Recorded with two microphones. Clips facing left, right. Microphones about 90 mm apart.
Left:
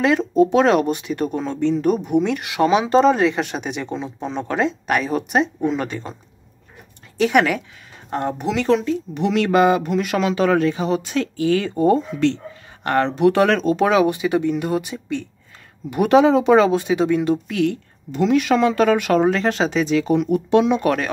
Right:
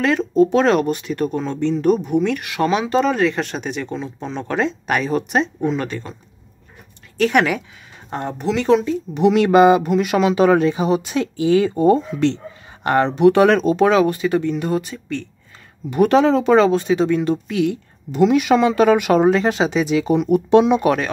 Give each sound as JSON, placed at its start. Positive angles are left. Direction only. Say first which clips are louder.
{"t": 0.0, "sound": "speech", "louder": "even", "side_deg": 15}
{"t": 3.2, "sound": "speech", "louder": "even", "side_deg": 10}
{"t": 7.2, "sound": "speech", "louder": "even", "side_deg": 5}
{"t": 8.4, "sound": "speech", "louder": "right 1 dB", "side_deg": 10}
{"t": 8.6, "sound": "a woman's voice", "louder": "right 3 dB", "side_deg": -5}
{"t": 9.8, "sound": "a woman's voice", "louder": "right 3 dB", "side_deg": -5}
{"t": 11.7, "sound": "speech", "louder": "right 2 dB", "side_deg": -5}
{"t": 13.1, "sound": "speech", "louder": "right 4 dB", "side_deg": 0}
{"t": 13.8, "sound": "speech", "louder": "even", "side_deg": 10}
{"t": 17.6, "sound": "a woman's voice", "louder": "right 1 dB", "side_deg": -10}
{"t": 20.2, "sound": "speech", "louder": "right 3 dB", "side_deg": -20}
{"t": 20.6, "sound": "a woman's voice", "louder": "right 2 dB", "side_deg": -10}